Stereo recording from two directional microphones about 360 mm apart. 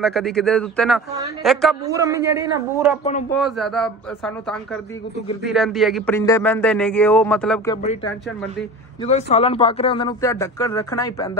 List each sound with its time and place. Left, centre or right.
0.0 s a man's voice: centre
3.0 s speech: centre
3.3 s a man's voice: centre